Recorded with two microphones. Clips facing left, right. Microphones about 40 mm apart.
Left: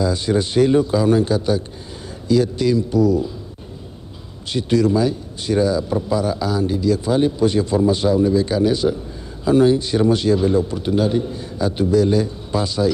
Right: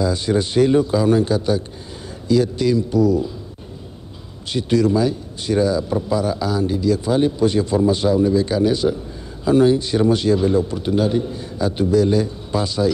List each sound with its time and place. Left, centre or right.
0.0 s a man's voice: centre
4.5 s a man's voice: right